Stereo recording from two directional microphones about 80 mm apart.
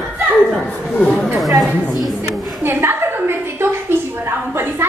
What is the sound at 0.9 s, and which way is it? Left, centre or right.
Speech, centre.